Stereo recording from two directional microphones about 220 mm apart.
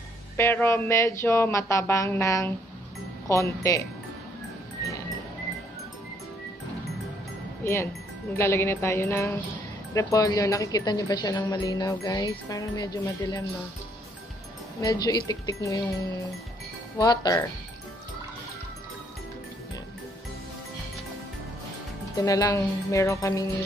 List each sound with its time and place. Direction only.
0.4 s speech: 10° left (ahead or behind)
7.6 s speech: 10° left (ahead or behind)
14.8 s speech: 20° left (ahead or behind)
17.0 s speech: 15° left (ahead or behind)
22.1 s speech: 15° left (ahead or behind)